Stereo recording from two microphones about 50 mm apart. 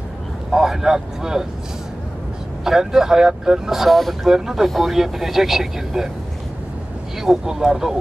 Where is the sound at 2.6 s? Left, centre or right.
Centre.